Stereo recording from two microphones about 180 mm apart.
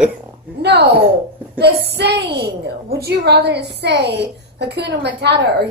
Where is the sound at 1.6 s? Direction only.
65° right (ahead or behind).